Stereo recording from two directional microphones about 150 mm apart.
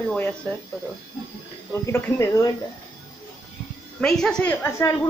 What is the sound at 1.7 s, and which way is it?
Speech, 15° left (ahead or behind).